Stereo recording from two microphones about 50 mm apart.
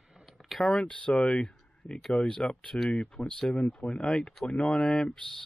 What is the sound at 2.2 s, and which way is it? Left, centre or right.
Speech, centre.